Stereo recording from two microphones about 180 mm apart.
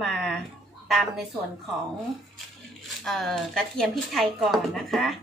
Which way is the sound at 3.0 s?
Centre (ahead or behind).